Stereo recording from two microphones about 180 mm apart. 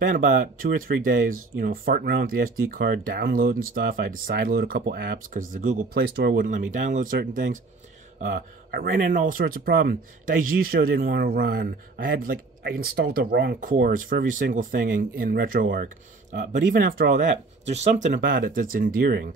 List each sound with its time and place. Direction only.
0.0 s speech: 50° right (ahead or behind); by 6.4 s 65° right (ahead or behind)
6.4 s speech: 45° right (ahead or behind)